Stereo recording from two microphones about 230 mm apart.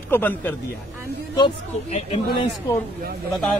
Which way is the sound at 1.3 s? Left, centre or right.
Centre.